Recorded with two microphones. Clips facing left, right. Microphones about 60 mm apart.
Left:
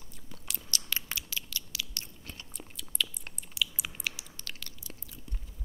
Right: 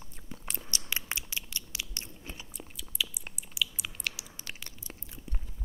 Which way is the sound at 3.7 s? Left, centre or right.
Centre.